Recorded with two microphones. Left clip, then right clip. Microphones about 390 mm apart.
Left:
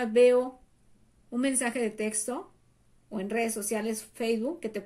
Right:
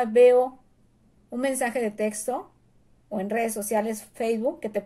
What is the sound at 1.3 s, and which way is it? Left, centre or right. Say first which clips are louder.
Speech: right 4 dB; right.